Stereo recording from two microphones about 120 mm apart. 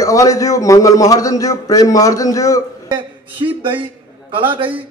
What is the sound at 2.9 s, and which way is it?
A man's voice, 45° right (ahead or behind).